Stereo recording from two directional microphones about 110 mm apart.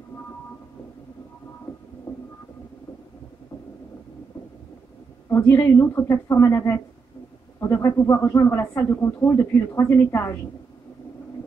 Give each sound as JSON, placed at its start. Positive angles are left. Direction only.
{"t": 5.3, "sound": "speech", "side_deg": 20}